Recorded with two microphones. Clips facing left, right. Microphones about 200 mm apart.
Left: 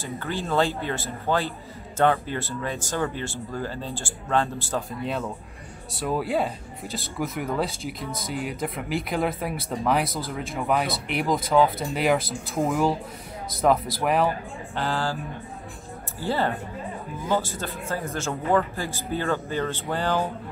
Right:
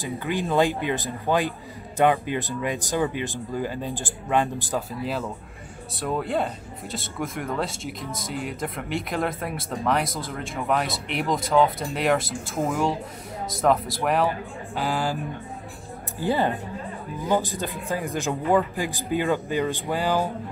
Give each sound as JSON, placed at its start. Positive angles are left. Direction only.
{"t": 0.0, "sound": "a man's voice", "side_deg": -15}
{"t": 4.7, "sound": "speech", "side_deg": 0}
{"t": 14.8, "sound": "a man's voice", "side_deg": -15}
{"t": 16.2, "sound": "a man's voice", "side_deg": -15}